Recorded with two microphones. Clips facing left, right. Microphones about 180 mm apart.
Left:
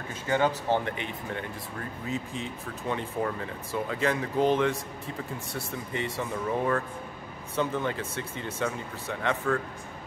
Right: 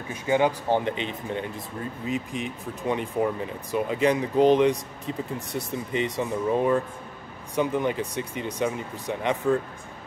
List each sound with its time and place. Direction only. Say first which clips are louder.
0.1 s speech: right 4 dB; 15° right (ahead or behind)